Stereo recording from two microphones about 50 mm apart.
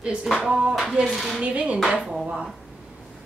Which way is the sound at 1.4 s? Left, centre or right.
Right.